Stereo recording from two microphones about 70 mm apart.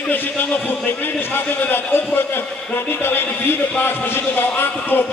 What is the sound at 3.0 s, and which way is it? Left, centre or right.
A man's voice, left.